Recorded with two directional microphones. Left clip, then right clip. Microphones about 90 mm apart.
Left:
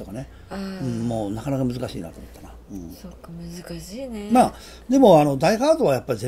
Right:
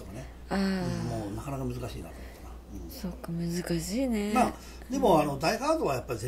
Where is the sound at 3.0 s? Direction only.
20° right (ahead or behind).